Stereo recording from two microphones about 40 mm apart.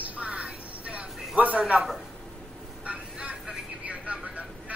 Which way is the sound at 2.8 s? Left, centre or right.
Right.